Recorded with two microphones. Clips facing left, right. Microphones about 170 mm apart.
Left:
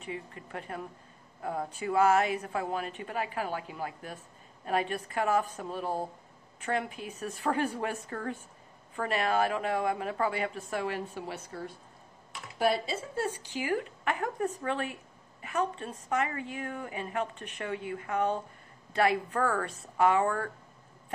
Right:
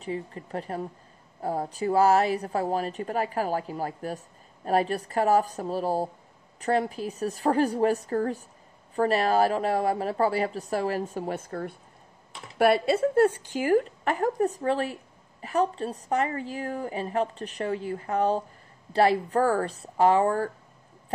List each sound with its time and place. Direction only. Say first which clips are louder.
0.0 s a woman's voice: right 7 dB; 35° right (ahead or behind); by 11.7 s 50° right (ahead or behind)
12.5 s a woman's voice: right 7 dB; 65° right (ahead or behind); by 20.5 s 30° right (ahead or behind)